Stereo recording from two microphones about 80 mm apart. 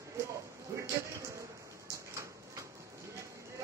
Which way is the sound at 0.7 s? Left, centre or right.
Right.